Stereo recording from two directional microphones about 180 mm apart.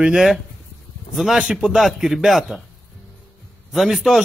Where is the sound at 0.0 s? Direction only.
5° right (ahead or behind).